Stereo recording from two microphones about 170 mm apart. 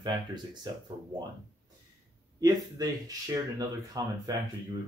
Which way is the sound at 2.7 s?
20° right (ahead or behind).